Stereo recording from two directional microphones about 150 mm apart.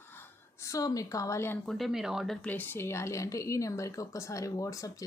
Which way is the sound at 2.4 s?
15° left (ahead or behind).